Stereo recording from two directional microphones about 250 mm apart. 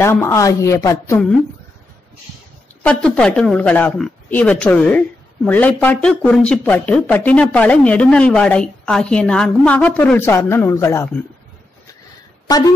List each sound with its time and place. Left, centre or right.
0.0 s a woman's voice: centre
2.8 s speech: centre
12.4 s speech: centre